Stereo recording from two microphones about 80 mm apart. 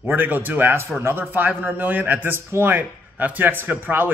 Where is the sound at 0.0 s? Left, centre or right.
Right.